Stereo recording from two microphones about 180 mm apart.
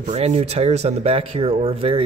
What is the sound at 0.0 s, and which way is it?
Speech, 40° right (ahead or behind).